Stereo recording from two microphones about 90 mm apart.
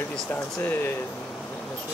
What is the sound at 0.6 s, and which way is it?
Speech, 20° left (ahead or behind).